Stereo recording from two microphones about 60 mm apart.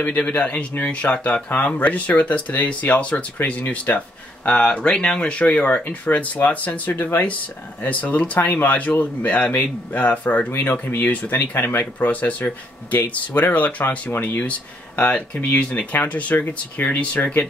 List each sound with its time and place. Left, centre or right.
0.2 s speech: left
10.5 s speech: left